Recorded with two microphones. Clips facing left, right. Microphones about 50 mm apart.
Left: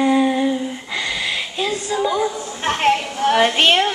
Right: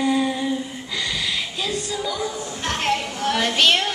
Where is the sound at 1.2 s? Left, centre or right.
Left.